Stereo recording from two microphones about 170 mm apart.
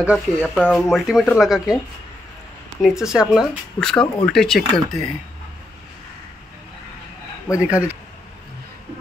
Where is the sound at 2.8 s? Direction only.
5° right (ahead or behind).